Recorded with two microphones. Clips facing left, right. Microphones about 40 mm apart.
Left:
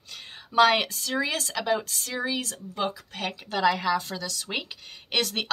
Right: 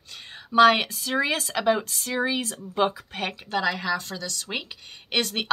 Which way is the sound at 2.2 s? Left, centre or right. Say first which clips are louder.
Right 4 dB; right.